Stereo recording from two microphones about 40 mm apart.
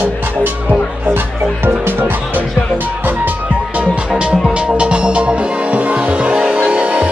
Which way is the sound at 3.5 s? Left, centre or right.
Right.